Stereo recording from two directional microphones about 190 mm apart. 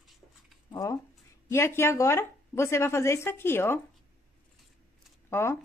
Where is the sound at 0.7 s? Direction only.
20° left (ahead or behind).